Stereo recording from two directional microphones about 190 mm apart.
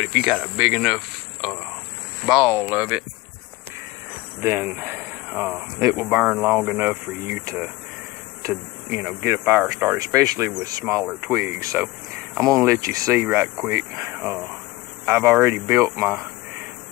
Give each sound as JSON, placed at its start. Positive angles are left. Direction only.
{"t": 0.0, "sound": "cricket", "side_deg": -5}
{"t": 2.3, "sound": "speech", "side_deg": -5}
{"t": 4.4, "sound": "speech", "side_deg": -10}
{"t": 9.9, "sound": "speech", "side_deg": -20}